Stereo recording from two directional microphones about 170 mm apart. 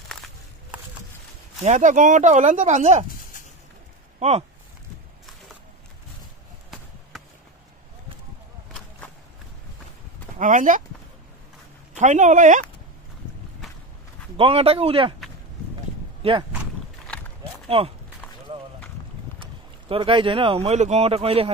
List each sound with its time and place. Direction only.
1.6 s speech: 45° right (ahead or behind)
4.2 s speech: 40° right (ahead or behind)
6.7 s basketball bounce: centre (ahead or behind)
10.4 s speech: 50° right (ahead or behind)
11.9 s speech: 45° right (ahead or behind)
14.3 s a man's voice: 35° right (ahead or behind)
16.2 s speech: 30° right (ahead or behind)
17.6 s speech: 35° right (ahead or behind)
19.4 s speech: 30° right (ahead or behind)